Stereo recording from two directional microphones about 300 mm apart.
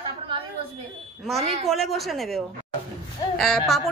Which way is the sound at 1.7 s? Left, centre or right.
Centre.